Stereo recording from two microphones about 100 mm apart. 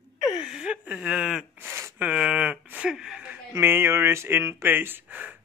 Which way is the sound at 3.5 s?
25° right (ahead or behind).